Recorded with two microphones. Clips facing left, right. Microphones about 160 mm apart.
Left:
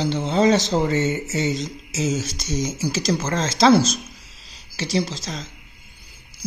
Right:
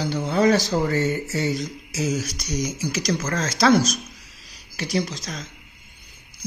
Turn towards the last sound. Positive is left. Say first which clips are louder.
# left 2 dB
turn(degrees=30)  # may be behind; listen again after turning